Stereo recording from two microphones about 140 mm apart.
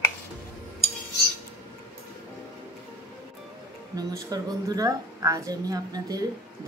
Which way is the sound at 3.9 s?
25° right (ahead or behind).